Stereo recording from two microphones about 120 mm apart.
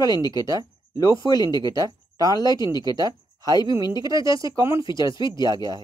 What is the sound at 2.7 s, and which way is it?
Speech, 35° left (ahead or behind).